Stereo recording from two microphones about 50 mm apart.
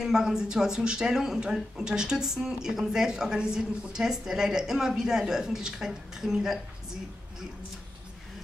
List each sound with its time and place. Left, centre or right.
0.0 s speech: centre